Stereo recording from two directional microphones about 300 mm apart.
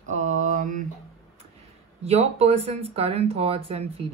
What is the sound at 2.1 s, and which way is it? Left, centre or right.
Speech, right.